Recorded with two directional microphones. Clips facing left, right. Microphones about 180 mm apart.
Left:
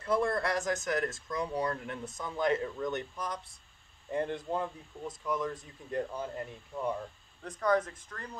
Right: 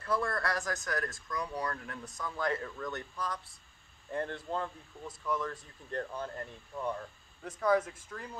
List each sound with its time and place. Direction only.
0.0 s speech: 20° left (ahead or behind)
7.4 s speech: 5° right (ahead or behind)